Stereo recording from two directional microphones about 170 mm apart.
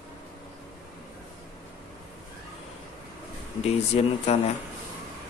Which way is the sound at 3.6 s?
40° left (ahead or behind).